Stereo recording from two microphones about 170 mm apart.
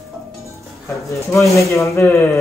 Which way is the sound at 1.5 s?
15° left (ahead or behind).